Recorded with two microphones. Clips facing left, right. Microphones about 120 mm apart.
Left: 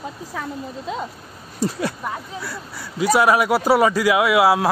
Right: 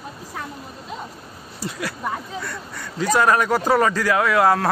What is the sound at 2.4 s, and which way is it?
Speech, 5° left (ahead or behind).